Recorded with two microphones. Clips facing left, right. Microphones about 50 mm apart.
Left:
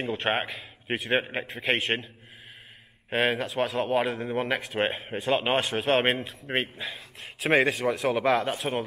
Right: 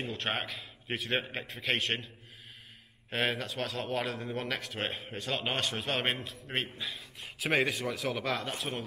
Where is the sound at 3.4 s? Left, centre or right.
Centre.